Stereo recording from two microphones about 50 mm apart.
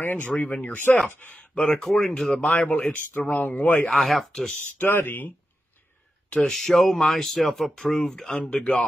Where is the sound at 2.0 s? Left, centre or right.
Centre.